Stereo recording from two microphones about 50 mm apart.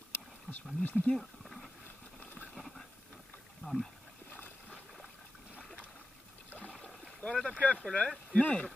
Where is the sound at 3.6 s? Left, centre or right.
Left.